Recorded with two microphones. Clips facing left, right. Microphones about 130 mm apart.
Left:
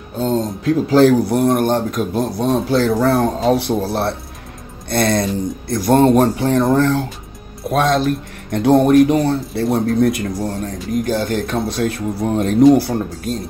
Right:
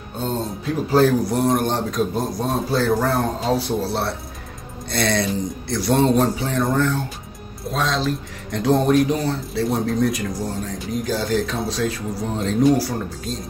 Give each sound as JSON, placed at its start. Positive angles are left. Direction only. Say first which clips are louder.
{"t": 0.7, "sound": "speech", "louder": "left 5 dB", "side_deg": 85}
{"t": 7.7, "sound": "speech", "louder": "left 7 dB", "side_deg": 55}